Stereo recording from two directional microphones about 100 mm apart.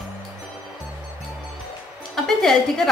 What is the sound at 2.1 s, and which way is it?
Music, 5° left (ahead or behind).